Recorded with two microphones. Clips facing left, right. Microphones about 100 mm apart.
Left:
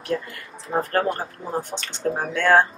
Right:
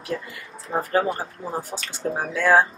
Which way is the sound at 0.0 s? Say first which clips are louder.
Left 3 dB; 5° right (ahead or behind).